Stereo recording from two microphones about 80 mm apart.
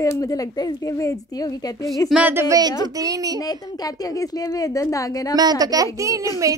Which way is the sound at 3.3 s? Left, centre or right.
Left.